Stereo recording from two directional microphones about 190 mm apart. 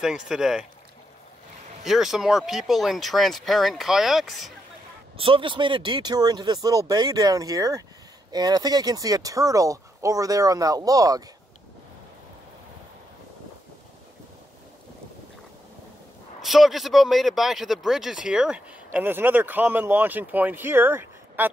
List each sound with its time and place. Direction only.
0.0 s speech: 5° right (ahead or behind)
1.9 s speech: centre (ahead or behind)
5.1 s speech: 30° right (ahead or behind)
16.3 s speech: centre (ahead or behind)